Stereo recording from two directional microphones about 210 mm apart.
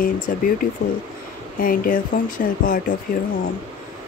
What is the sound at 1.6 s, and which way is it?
Speech, 40° left (ahead or behind).